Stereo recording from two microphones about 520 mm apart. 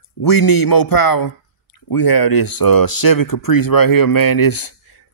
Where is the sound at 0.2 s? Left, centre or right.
Left.